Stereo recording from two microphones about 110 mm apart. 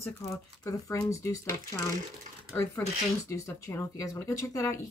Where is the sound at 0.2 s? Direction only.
30° left (ahead or behind).